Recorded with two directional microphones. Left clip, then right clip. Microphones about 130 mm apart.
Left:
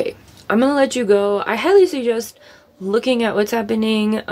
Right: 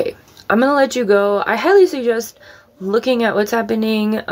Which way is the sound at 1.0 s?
35° left (ahead or behind).